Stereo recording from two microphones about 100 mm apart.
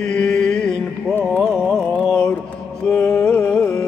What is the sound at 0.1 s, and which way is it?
Mantra, 5° left (ahead or behind).